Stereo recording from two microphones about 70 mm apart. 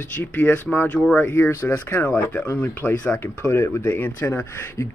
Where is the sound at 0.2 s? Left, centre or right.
Left.